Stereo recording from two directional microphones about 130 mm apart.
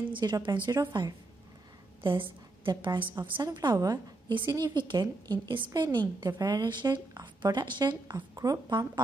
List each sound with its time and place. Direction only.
0.1 s a woman's voice: 35° right (ahead or behind)